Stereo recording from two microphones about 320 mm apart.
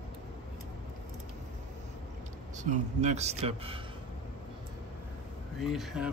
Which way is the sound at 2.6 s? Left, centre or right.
Right.